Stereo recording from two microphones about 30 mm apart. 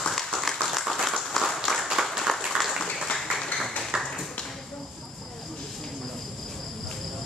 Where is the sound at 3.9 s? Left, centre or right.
Right.